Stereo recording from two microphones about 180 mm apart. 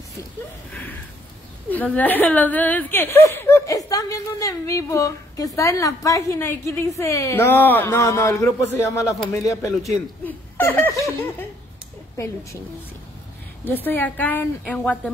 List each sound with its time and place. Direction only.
1.7 s speech: 10° left (ahead or behind)
13.8 s speech: 10° left (ahead or behind)